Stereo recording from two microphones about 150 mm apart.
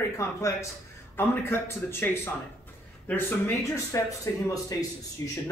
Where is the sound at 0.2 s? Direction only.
20° left (ahead or behind).